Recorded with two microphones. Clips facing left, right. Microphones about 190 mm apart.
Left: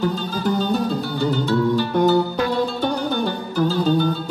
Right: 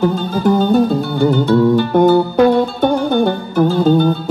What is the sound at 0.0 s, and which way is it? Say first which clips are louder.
Music: right 7 dB; 55° right (ahead or behind).